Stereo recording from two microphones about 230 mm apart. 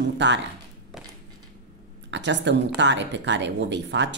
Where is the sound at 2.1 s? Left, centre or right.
Right.